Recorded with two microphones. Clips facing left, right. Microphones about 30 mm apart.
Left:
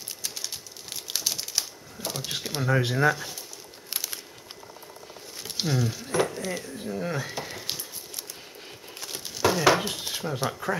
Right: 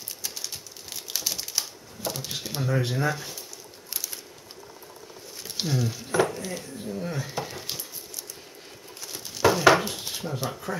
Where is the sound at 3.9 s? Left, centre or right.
Left.